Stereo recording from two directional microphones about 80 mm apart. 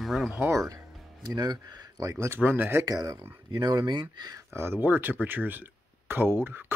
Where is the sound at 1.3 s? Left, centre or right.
Right.